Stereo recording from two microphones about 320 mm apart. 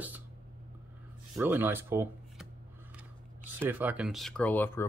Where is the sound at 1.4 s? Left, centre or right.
Centre.